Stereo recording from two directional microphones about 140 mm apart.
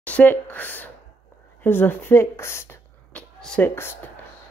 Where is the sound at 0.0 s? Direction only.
10° left (ahead or behind).